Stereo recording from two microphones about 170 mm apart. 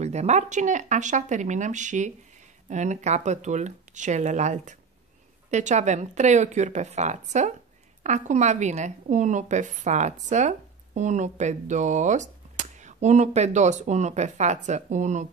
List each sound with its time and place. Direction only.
0.0 s speech: 40° right (ahead or behind)